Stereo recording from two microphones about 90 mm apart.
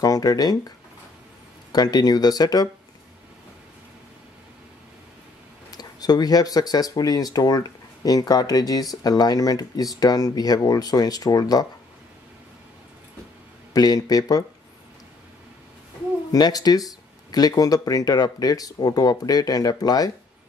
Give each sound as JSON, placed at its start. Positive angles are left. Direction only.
{"t": 0.0, "sound": "speech", "side_deg": 45}
{"t": 1.7, "sound": "speech", "side_deg": 45}
{"t": 5.7, "sound": "speech", "side_deg": 45}
{"t": 13.7, "sound": "speech", "side_deg": 45}
{"t": 16.3, "sound": "speech", "side_deg": 45}